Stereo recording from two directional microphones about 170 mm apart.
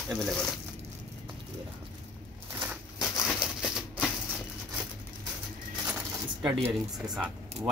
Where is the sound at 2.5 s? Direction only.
10° right (ahead or behind).